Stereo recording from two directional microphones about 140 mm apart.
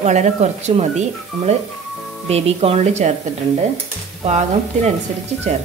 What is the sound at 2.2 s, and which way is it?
Speech, 45° right (ahead or behind).